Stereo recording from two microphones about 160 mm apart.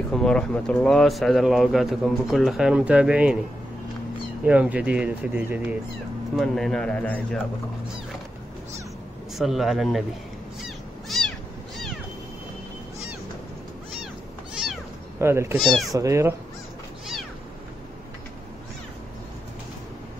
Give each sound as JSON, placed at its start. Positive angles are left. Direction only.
{"t": 0.1, "sound": "speech", "side_deg": 5}
{"t": 4.5, "sound": "speech", "side_deg": -10}
{"t": 9.4, "sound": "speech", "side_deg": 0}
{"t": 10.6, "sound": "a sound", "side_deg": 0}
{"t": 14.5, "sound": "cat", "side_deg": -5}
{"t": 15.1, "sound": "speech", "side_deg": -15}
{"t": 15.6, "sound": "speech", "side_deg": 0}
{"t": 15.9, "sound": "speech", "side_deg": -20}